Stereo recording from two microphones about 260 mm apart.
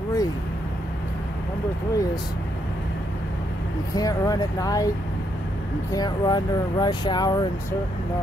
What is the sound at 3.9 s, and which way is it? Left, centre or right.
Speech, centre.